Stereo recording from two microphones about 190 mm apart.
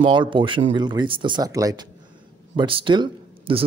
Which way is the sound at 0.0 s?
25° right (ahead or behind).